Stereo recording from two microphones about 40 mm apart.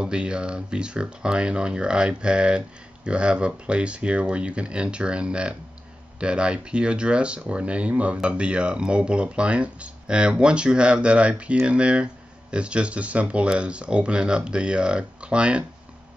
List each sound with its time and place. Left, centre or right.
0.0 s speech: right